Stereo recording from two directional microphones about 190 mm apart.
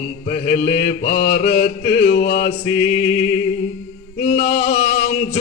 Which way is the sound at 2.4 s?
35° left (ahead or behind).